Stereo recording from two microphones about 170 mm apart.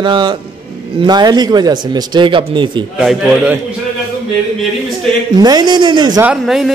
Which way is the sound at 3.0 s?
5° right (ahead or behind).